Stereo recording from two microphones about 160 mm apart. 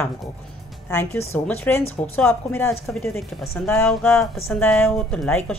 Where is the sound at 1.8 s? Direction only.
40° left (ahead or behind).